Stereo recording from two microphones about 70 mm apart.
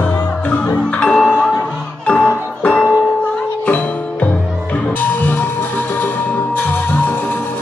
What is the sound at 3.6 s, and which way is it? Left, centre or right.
Music, left.